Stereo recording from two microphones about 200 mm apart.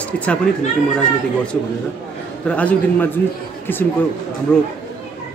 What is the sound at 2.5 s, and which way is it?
Speech, 5° left (ahead or behind).